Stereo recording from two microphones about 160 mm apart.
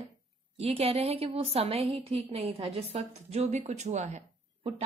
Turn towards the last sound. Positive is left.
turn(degrees=-45)  # may be behind; listen again after turning